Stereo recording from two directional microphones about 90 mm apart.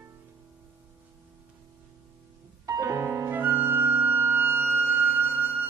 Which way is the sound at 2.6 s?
35° right (ahead or behind).